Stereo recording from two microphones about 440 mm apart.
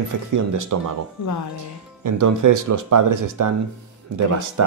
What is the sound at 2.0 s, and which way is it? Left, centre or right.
Speech, right.